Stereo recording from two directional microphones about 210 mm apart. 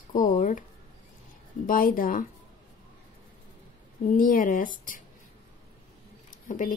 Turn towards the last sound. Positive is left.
turn(degrees=40)  # may be behind; listen again after turning